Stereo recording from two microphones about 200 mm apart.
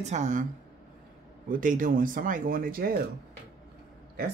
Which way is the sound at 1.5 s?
40° right (ahead or behind).